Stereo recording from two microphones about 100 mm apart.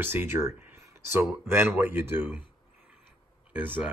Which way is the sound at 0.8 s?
25° right (ahead or behind).